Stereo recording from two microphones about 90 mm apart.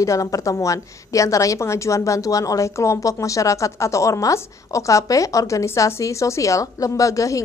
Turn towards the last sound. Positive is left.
turn(degrees=40)  # may be behind; listen again after turning